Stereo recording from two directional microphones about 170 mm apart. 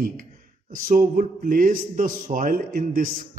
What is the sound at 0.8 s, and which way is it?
A man's voice, 55° right (ahead or behind).